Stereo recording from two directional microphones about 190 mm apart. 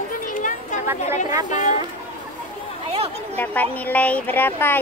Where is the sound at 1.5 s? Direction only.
40° left (ahead or behind).